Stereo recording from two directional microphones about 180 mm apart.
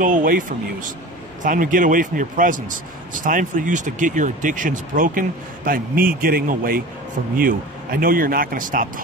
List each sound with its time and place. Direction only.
0.0 s speech: 50° right (ahead or behind)